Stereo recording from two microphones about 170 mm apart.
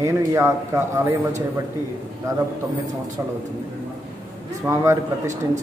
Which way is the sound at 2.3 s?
20° right (ahead or behind).